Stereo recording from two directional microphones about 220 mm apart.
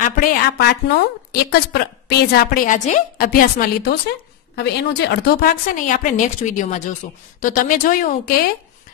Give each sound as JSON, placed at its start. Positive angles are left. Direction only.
{"t": 0.0, "sound": "a woman's voice", "side_deg": 40}